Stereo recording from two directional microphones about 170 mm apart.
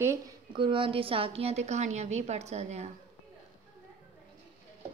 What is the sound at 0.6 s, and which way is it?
A woman's voice, 30° right (ahead or behind).